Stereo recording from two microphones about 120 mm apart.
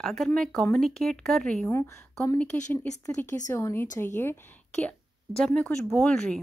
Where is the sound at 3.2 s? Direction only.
90° left.